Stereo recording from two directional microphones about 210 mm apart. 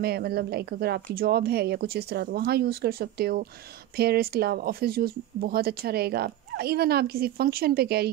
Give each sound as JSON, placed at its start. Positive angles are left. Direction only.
{"t": 0.0, "sound": "speech", "side_deg": -50}